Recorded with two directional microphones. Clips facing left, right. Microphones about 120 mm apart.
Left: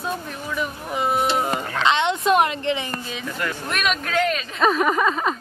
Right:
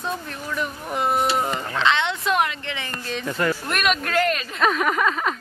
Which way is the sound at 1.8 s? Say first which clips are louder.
Left 2 dB; 20° left (ahead or behind).